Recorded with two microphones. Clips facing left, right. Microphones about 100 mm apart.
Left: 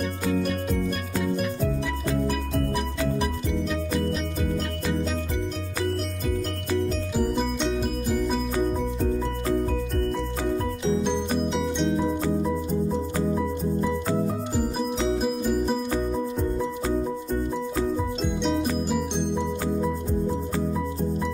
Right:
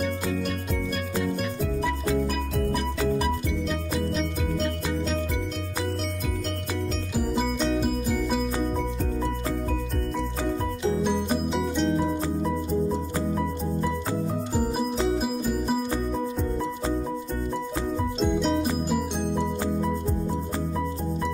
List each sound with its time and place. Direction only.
1.2 s music: 5° left (ahead or behind)
11.4 s music: centre (ahead or behind)
15.0 s music: centre (ahead or behind)
18.2 s music: centre (ahead or behind)